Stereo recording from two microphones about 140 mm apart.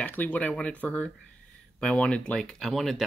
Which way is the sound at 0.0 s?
10° left (ahead or behind).